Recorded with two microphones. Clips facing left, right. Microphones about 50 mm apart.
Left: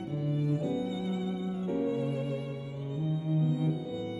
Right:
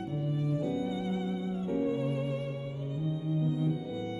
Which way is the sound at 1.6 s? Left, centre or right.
Centre.